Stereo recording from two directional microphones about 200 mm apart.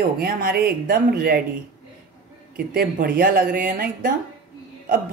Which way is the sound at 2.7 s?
45° right (ahead or behind).